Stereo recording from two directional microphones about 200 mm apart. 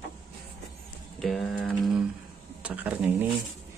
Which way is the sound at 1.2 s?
Centre (ahead or behind).